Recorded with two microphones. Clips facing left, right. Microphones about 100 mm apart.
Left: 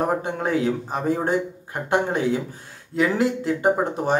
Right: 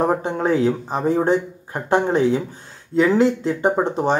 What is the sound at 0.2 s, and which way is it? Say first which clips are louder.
Speech: right 4 dB; 30° right (ahead or behind).